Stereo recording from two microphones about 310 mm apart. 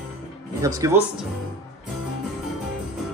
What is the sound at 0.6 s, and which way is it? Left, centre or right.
Speech, centre.